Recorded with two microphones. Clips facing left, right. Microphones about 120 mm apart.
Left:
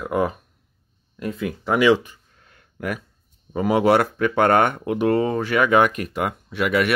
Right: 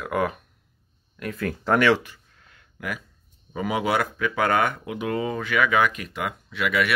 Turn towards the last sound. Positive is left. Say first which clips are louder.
# left 4 dB
turn(degrees=50)  # may be behind; listen again after turning